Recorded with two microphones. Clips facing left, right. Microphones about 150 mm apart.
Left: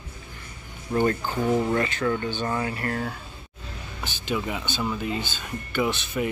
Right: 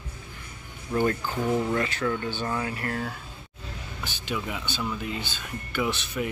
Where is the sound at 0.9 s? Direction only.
20° left (ahead or behind).